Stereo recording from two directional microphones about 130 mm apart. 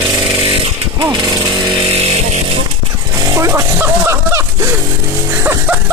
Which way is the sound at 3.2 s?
20° right (ahead or behind).